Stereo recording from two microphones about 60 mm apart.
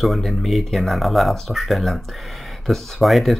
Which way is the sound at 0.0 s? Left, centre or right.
Centre.